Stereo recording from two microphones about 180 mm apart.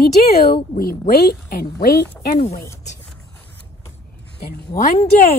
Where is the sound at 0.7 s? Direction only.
50° left (ahead or behind).